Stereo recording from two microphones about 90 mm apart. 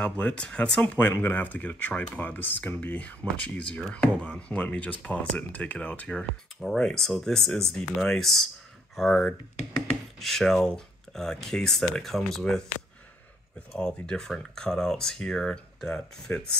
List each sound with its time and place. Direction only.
0.2 s speech: 10° left (ahead or behind)
0.9 s speech: 25° left (ahead or behind)
6.6 s speech: 5° left (ahead or behind)
13.7 s speech: 10° left (ahead or behind)